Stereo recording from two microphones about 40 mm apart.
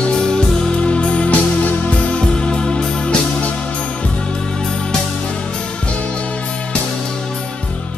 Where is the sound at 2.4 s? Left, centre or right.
Left.